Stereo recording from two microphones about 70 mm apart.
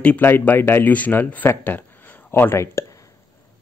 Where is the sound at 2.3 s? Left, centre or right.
Left.